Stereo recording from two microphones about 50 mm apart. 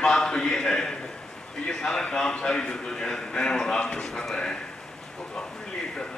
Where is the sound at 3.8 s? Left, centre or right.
Left.